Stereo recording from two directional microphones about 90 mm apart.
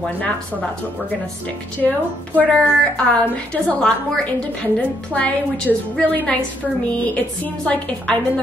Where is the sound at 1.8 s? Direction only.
15° left (ahead or behind).